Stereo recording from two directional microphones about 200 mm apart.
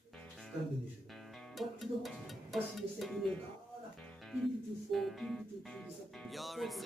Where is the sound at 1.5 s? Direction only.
Centre (ahead or behind).